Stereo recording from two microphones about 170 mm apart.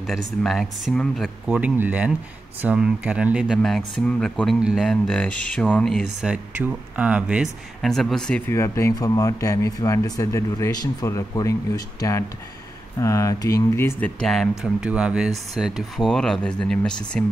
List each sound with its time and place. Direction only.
0.0 s speech: centre (ahead or behind)
1.5 s speech: 10° right (ahead or behind)